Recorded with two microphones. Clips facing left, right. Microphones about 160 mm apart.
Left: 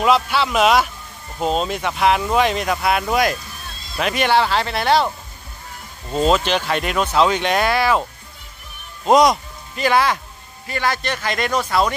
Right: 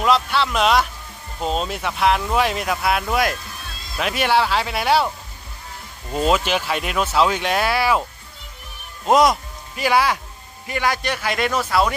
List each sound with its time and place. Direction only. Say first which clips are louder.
0.0 s speech: left 2 dB; 5° left (ahead or behind)
6.2 s speech: left 2 dB; 5° right (ahead or behind)
9.0 s speech: left 2 dB; 5° right (ahead or behind)